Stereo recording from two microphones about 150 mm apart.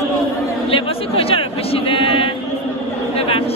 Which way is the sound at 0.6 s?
40° left (ahead or behind).